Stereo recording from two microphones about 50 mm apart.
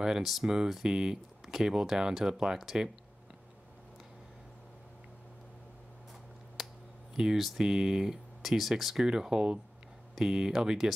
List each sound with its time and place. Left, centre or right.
0.2 s speech: centre
6.6 s a sound: centre
7.2 s speech: centre